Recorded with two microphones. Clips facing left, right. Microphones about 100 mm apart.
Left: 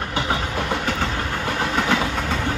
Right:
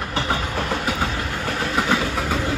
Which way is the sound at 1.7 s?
5° right (ahead or behind).